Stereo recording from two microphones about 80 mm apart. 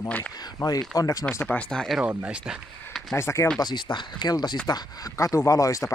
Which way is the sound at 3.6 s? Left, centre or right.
Left.